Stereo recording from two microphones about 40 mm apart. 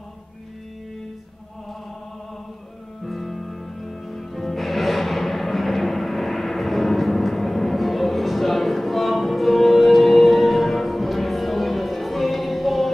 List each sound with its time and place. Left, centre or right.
3.1 s music: centre